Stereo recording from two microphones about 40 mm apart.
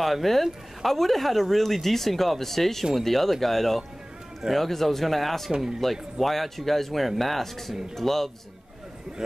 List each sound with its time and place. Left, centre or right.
0.0 s speech: centre